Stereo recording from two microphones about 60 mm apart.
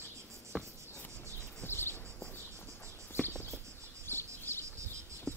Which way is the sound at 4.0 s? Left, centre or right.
Left.